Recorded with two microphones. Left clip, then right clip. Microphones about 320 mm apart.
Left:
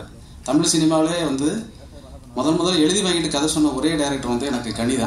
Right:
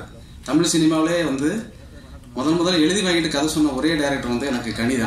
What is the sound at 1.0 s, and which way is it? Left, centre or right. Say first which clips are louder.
A man's voice: right 1 dB; centre.